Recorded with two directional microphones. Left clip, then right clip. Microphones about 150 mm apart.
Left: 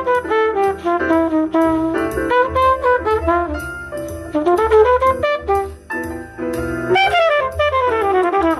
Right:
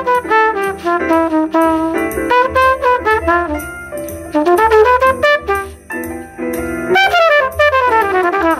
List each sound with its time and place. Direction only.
0.0 s music: 5° right (ahead or behind)
1.9 s music: 30° left (ahead or behind)
2.2 s brass instrument: 10° right (ahead or behind)
4.3 s music: 10° right (ahead or behind)
5.9 s music: 25° left (ahead or behind)
6.9 s trumpet: centre (ahead or behind)